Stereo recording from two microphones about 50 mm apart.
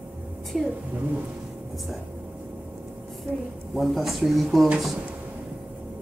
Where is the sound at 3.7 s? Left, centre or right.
Centre.